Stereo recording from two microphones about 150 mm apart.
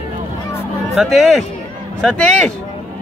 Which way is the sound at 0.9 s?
Centre (ahead or behind).